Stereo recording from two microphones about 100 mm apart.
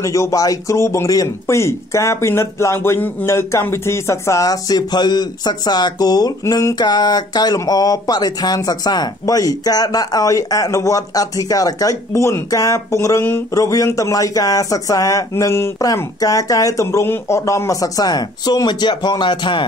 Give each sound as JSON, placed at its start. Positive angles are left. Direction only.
{"t": 0.0, "sound": "speech", "side_deg": 30}
{"t": 6.4, "sound": "a sound", "side_deg": 25}
{"t": 6.7, "sound": "speech", "side_deg": 45}